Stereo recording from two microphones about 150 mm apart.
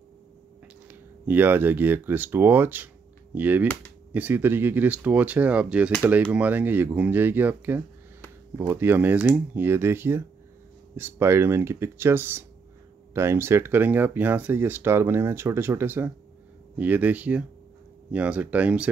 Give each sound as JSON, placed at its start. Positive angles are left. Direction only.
{"t": 0.8, "sound": "speech", "side_deg": -10}